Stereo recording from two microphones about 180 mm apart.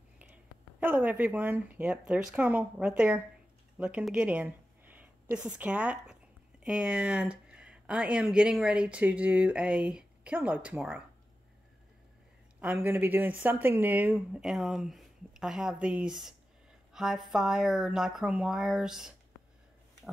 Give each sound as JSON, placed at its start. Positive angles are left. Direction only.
{"t": 0.2, "sound": "speech", "side_deg": -10}
{"t": 12.5, "sound": "speech", "side_deg": -10}